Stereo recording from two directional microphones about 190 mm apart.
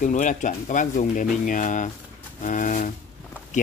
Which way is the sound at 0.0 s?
40° left (ahead or behind).